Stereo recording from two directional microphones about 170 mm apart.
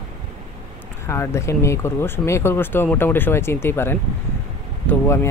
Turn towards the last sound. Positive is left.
turn(degrees=15)  # may be behind; listen again after turning